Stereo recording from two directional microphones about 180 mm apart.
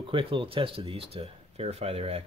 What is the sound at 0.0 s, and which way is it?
Speech, 30° right (ahead or behind).